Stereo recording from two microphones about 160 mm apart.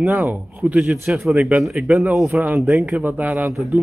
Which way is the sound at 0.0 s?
10° right (ahead or behind).